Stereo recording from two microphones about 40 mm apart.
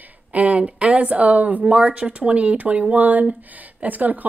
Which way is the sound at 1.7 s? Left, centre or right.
Right.